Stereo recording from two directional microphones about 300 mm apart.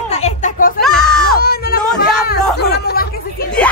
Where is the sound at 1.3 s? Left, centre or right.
Left.